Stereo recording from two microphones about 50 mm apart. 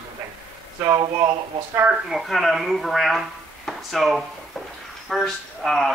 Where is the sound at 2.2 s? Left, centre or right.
Centre.